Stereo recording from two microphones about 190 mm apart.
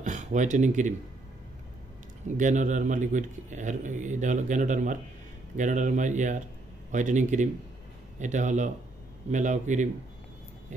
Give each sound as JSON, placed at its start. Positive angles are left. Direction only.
{"t": 0.0, "sound": "speech", "side_deg": -40}
{"t": 2.2, "sound": "a man's voice", "side_deg": -40}